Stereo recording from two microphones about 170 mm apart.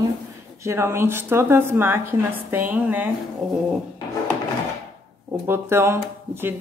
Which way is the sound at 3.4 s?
5° right (ahead or behind).